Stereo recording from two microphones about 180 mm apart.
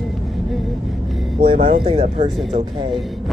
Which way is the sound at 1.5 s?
30° right (ahead or behind).